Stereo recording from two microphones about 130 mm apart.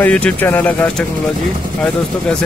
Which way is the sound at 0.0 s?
10° left (ahead or behind).